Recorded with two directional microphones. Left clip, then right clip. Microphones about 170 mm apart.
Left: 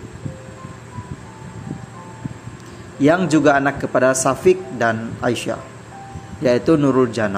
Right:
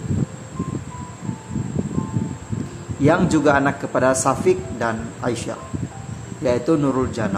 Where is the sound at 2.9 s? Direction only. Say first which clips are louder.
Left 2 dB; 20° left (ahead or behind).